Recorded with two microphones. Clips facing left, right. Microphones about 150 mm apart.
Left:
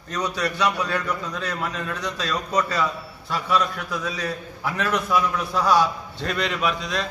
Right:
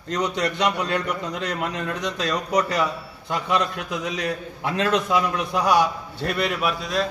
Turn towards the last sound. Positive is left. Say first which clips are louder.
# right 1 dB
turn(degrees=-5)  # may be behind; listen again after turning